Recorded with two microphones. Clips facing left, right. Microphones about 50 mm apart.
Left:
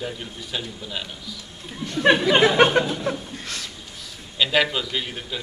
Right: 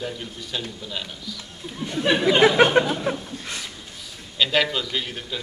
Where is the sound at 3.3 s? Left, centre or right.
Centre.